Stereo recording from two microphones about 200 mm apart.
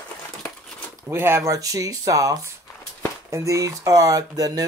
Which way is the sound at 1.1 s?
10° right (ahead or behind).